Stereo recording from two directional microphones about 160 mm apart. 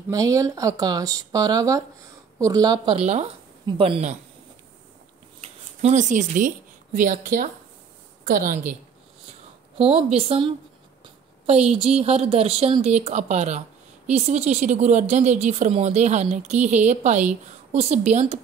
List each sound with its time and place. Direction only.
0.1 s a woman's voice: 20° right (ahead or behind); by 4.2 s 40° right (ahead or behind)
5.4 s a woman's voice: 45° right (ahead or behind); by 8.7 s 60° right (ahead or behind)
9.8 s a woman's voice: 40° right (ahead or behind)